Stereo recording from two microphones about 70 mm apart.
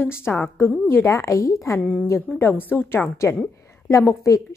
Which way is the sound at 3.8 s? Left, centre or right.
Left.